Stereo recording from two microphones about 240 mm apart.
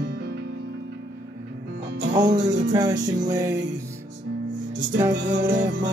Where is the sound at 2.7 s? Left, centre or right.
Centre.